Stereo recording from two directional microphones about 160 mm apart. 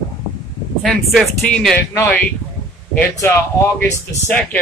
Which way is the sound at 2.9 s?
10° left (ahead or behind).